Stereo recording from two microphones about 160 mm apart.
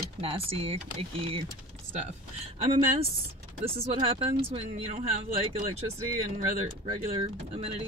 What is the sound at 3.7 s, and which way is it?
Speech, 35° right (ahead or behind).